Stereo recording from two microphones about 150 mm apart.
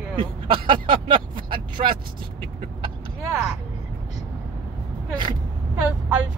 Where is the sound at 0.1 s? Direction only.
35° right (ahead or behind).